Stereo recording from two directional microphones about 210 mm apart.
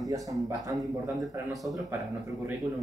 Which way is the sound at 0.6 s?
15° right (ahead or behind).